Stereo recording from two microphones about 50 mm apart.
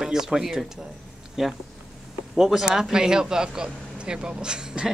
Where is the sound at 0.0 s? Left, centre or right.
Centre.